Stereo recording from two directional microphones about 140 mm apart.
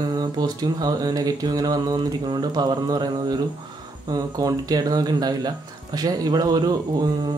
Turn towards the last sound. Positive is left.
turn(degrees=-30)  # may be behind; listen again after turning